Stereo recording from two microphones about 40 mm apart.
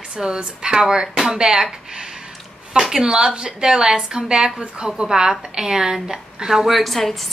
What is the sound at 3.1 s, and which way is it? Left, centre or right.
A woman's voice, centre.